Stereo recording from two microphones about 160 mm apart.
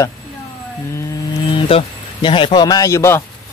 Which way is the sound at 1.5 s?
35° left (ahead or behind).